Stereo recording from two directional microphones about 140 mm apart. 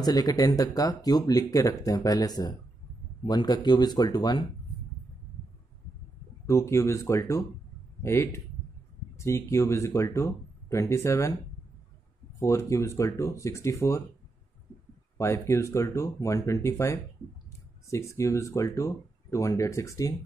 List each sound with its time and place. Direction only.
0.0 s speech: 25° left (ahead or behind)
6.4 s speech: 20° left (ahead or behind)
12.4 s speech: 20° left (ahead or behind)
15.1 s speech: 20° left (ahead or behind)